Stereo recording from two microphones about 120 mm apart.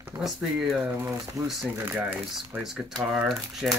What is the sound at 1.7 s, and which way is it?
Speech, 20° right (ahead or behind).